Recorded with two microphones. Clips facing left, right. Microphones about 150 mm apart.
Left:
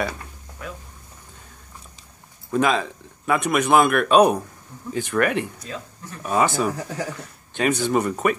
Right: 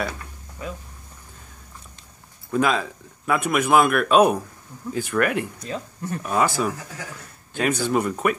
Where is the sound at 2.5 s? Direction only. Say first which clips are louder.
Left 1 dB; centre (ahead or behind).